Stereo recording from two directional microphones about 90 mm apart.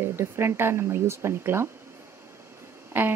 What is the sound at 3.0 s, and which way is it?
Speech, 20° right (ahead or behind).